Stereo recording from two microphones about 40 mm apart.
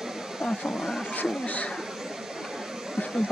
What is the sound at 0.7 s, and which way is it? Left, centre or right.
Speech, centre.